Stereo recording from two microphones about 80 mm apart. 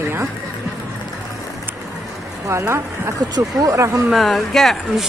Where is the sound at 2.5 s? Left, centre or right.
Right.